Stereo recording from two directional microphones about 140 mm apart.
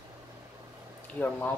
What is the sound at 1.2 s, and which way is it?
Speech, 10° left (ahead or behind).